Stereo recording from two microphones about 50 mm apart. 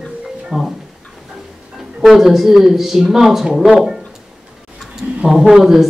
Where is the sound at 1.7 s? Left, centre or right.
Centre.